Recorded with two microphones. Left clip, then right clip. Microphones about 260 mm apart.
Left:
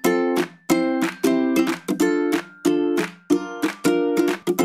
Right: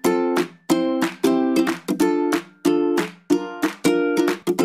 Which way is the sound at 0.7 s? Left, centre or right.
Centre.